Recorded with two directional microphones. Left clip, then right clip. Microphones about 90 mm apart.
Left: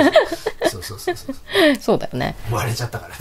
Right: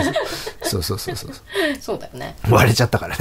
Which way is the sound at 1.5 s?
40° left (ahead or behind).